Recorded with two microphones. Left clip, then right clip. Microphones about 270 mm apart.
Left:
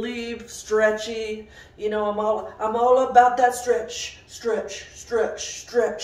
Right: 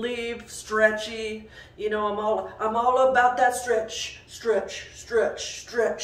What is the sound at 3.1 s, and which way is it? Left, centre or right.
Speech, centre.